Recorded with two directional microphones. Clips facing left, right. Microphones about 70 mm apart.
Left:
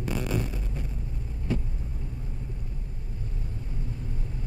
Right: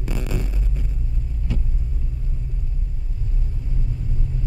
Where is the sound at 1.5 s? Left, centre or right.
Left.